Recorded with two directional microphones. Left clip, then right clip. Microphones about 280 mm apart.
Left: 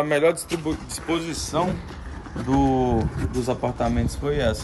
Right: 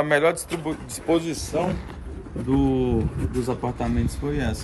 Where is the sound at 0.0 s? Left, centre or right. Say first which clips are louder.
Even; centre.